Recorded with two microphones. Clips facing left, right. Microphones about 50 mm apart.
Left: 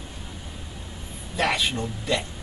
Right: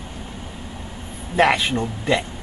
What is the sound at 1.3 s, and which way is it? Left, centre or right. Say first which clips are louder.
Speech: right 7 dB; right.